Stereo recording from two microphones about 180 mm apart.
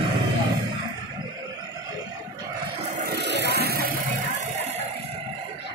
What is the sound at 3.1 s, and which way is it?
Vehicle, 70° right (ahead or behind).